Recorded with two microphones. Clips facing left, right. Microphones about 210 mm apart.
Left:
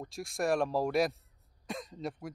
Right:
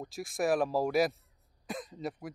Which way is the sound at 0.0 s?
Centre (ahead or behind).